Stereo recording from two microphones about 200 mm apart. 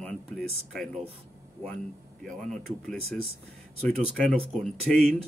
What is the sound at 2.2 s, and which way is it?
Speech, 5° left (ahead or behind).